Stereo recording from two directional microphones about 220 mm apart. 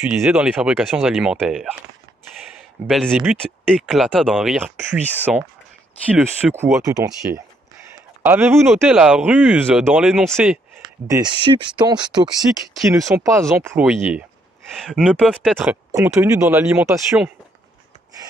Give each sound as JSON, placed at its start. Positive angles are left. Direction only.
{"t": 0.1, "sound": "speech", "side_deg": -5}
{"t": 2.9, "sound": "speech", "side_deg": 0}
{"t": 8.2, "sound": "speech", "side_deg": -10}
{"t": 11.1, "sound": "speech", "side_deg": -20}